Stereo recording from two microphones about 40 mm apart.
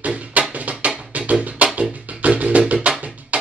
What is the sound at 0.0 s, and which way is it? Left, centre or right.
Music, right.